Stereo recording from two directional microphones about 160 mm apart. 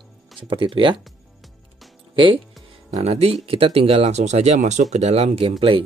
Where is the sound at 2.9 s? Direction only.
40° right (ahead or behind).